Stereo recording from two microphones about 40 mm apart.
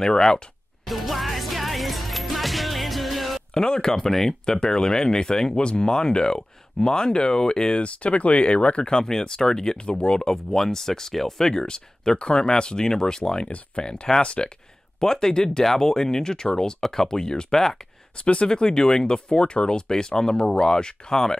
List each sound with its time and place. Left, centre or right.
0.0 s speech: centre
0.8 s music: centre
3.5 s speech: left
3.9 s speech: centre
7.8 s speech: left
8.9 s speech: centre
15.0 s speech: centre
18.1 s speech: left
18.5 s speech: centre